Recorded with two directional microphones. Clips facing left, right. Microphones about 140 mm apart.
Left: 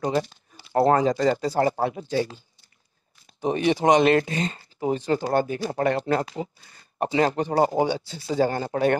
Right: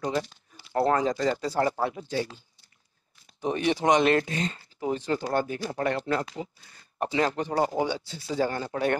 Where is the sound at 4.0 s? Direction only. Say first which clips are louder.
Left 4 dB; 90° left.